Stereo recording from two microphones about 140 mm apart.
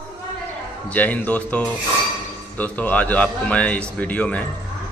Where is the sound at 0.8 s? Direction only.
10° left (ahead or behind).